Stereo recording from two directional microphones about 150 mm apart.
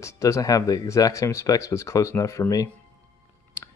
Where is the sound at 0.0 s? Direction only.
20° left (ahead or behind).